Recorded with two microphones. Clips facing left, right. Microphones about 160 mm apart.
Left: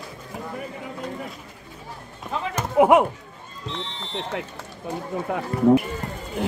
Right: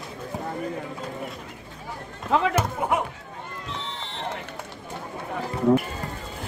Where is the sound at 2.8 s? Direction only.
90° left.